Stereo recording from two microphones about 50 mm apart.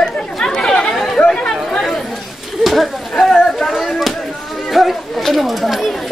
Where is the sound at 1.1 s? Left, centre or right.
Centre.